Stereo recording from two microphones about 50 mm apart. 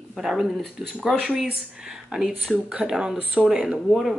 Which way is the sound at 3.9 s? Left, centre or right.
Centre.